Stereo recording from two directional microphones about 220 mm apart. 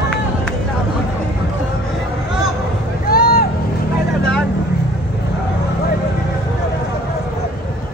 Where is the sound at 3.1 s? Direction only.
45° left (ahead or behind).